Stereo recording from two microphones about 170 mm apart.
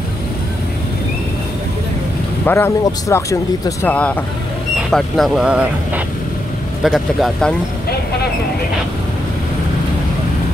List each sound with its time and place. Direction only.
2.4 s speech: 15° left (ahead or behind)
3.9 s speech: 5° left (ahead or behind)